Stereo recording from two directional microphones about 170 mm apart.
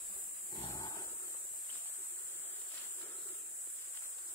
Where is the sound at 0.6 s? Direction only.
20° left (ahead or behind).